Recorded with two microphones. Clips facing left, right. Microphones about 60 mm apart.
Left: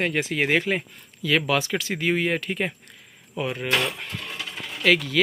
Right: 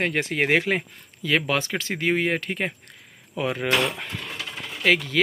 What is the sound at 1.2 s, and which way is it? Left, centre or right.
Speech, right.